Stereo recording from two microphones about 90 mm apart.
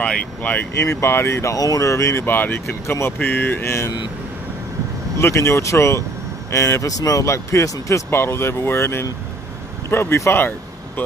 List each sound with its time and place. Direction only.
0.0 s speech: 15° left (ahead or behind)
0.7 s speech: 30° left (ahead or behind)
5.2 s speech: 30° left (ahead or behind)